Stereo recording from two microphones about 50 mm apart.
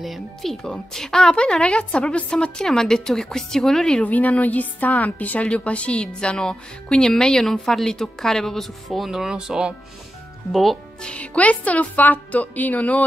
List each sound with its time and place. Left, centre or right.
0.0 s a woman's voice: centre
4.0 s a woman's voice: left; by 9.8 s centre
10.5 s speech: centre
11.0 s speech: left